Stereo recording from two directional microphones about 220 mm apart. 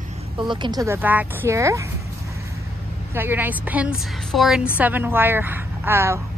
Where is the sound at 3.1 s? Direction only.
10° right (ahead or behind).